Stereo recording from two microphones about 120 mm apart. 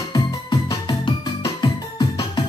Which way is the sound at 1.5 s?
35° left (ahead or behind).